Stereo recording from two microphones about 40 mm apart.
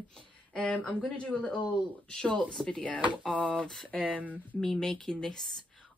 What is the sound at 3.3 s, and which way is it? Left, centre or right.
Speech, right.